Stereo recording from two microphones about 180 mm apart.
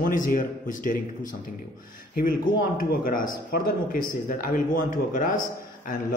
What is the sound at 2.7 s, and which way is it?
A man's voice, 50° left (ahead or behind).